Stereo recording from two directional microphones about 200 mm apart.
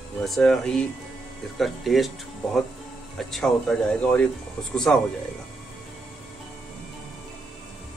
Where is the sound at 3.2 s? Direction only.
Centre (ahead or behind).